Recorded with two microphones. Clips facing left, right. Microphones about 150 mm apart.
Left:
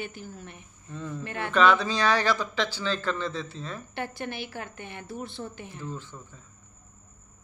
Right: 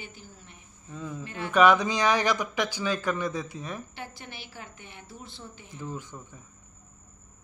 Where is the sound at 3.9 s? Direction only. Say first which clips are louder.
Left 8 dB; 60° left (ahead or behind).